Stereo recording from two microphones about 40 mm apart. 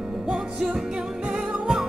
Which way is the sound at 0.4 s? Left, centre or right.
Right.